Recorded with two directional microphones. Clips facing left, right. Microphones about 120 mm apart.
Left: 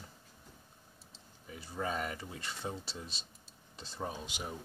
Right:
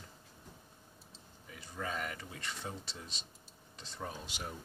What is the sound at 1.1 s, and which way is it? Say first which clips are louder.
Speech: left 4 dB; 30° left (ahead or behind).